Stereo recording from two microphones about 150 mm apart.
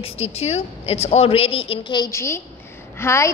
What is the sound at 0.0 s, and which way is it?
A woman's voice, 40° left (ahead or behind).